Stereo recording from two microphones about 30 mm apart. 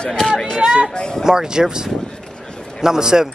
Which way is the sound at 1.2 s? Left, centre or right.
Centre.